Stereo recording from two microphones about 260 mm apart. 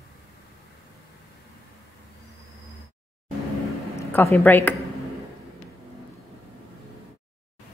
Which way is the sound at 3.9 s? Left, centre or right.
Centre.